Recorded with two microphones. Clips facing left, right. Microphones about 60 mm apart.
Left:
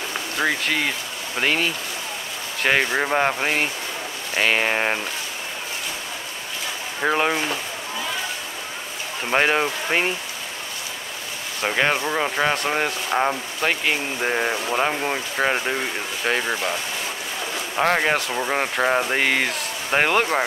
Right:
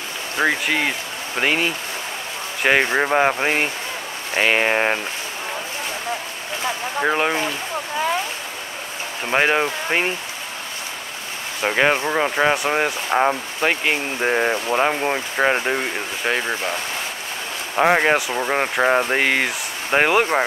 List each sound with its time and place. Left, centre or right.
0.4 s speech: centre
2.8 s speech: right
7.0 s speech: centre
9.2 s speech: centre
11.6 s speech: centre
17.7 s speech: centre